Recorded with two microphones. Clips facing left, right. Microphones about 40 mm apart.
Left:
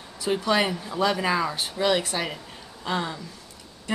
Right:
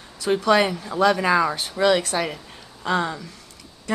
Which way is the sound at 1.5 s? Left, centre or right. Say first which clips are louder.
Right 4 dB; right.